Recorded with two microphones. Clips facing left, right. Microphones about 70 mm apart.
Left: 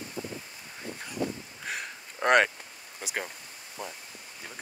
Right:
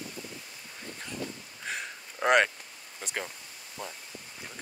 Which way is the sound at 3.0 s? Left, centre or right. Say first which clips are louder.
Left 1 dB; centre.